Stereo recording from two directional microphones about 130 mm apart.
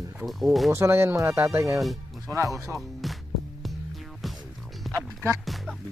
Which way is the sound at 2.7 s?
Centre (ahead or behind).